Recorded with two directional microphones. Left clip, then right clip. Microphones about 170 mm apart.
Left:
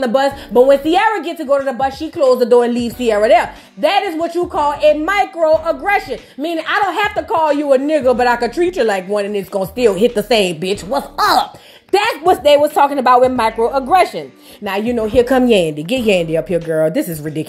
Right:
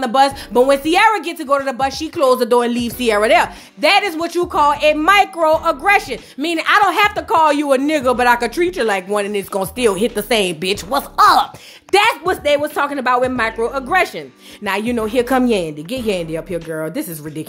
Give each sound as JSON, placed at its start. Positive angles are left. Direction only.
{"t": 0.0, "sound": "a woman's voice", "side_deg": -5}